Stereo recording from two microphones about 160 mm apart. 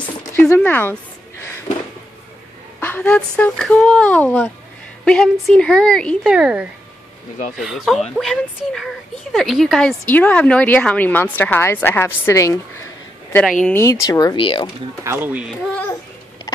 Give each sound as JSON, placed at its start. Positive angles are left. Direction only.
{"t": 0.3, "sound": "a woman's voice", "side_deg": 10}
{"t": 2.8, "sound": "a woman's voice", "side_deg": 10}
{"t": 13.3, "sound": "speech", "side_deg": 5}
{"t": 14.0, "sound": "speech", "side_deg": 25}
{"t": 15.0, "sound": "speech", "side_deg": -10}
{"t": 15.7, "sound": "babbling", "side_deg": 10}